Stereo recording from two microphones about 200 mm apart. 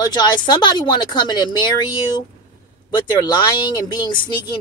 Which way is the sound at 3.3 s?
20° left (ahead or behind).